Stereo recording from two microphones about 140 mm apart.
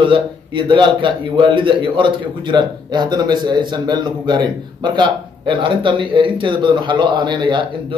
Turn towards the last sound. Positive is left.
turn(degrees=-35)  # may be behind; listen again after turning